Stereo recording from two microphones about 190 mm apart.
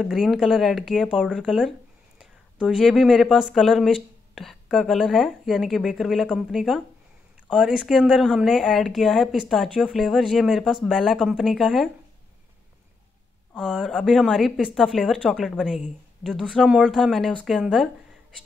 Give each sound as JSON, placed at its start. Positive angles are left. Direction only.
{"t": 0.0, "sound": "speech", "side_deg": 0}
{"t": 13.6, "sound": "speech", "side_deg": 0}